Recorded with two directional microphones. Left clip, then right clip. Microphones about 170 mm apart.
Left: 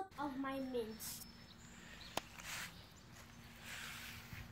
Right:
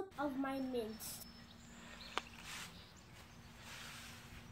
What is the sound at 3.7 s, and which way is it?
Boat, 45° left (ahead or behind).